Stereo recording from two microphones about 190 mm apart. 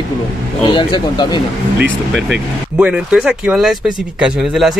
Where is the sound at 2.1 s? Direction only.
5° right (ahead or behind).